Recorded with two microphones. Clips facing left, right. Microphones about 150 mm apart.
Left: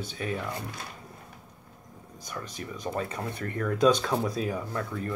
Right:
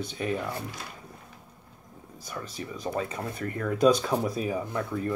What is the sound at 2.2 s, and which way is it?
Speech, 5° right (ahead or behind).